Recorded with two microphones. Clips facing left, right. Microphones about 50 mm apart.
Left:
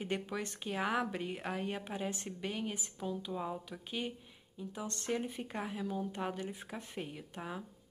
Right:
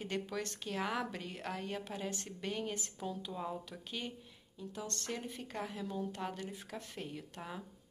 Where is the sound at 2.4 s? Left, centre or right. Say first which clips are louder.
Right 1 dB; centre.